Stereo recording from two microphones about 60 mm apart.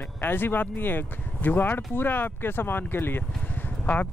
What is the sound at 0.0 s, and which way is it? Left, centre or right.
Speech, left.